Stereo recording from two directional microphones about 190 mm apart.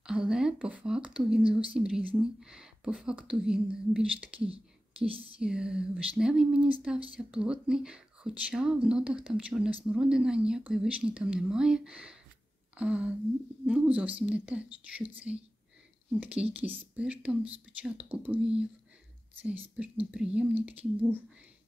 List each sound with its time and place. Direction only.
0.0 s speech: 5° right (ahead or behind)
4.5 s whispering: 30° right (ahead or behind)
5.4 s speech: 5° right (ahead or behind)